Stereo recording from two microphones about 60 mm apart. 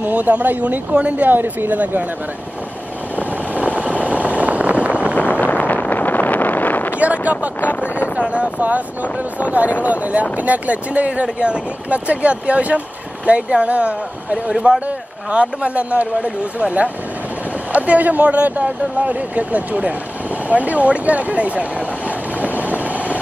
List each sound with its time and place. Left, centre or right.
0.0 s speech: right
3.6 s vehicle: right
5.3 s vehicle: left
7.0 s a sound: right
8.3 s speech: right